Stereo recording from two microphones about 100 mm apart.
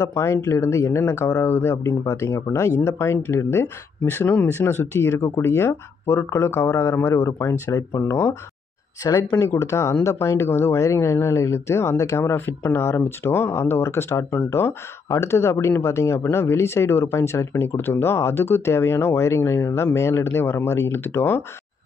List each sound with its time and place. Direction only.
0.1 s speech: 30° left (ahead or behind)
9.4 s speech: 25° left (ahead or behind)